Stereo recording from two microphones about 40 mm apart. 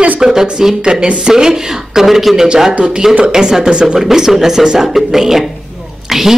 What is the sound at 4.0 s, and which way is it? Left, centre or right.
Speech, centre.